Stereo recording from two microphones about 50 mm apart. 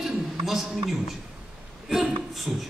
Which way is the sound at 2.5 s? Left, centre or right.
Centre.